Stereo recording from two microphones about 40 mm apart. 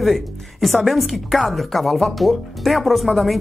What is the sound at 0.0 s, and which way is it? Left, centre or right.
Speech, centre.